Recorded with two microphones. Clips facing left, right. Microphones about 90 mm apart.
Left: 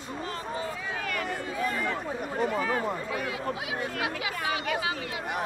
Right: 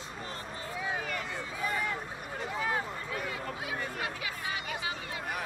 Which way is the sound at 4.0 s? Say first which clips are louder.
Left 6 dB; 90° left.